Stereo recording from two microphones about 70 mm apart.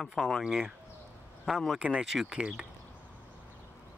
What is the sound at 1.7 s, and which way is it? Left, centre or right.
Speech, centre.